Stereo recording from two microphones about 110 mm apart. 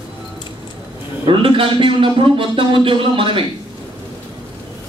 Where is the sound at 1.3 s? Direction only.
55° right (ahead or behind).